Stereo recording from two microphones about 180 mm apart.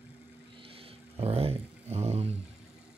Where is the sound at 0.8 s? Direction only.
35° right (ahead or behind).